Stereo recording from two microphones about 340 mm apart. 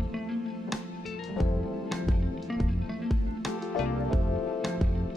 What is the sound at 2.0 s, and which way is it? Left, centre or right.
Music, centre.